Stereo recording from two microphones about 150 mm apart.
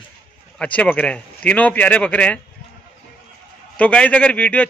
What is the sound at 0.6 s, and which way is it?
A man's voice, 10° left (ahead or behind).